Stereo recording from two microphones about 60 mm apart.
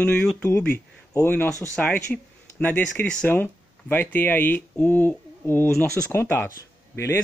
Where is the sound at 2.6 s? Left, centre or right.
Left.